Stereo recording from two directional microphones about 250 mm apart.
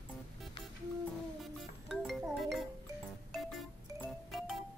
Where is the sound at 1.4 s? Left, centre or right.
Centre.